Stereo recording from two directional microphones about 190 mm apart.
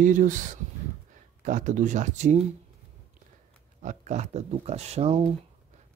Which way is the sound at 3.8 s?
40° right (ahead or behind).